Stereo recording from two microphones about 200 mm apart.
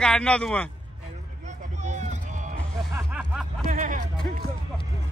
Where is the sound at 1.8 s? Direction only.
35° right (ahead or behind).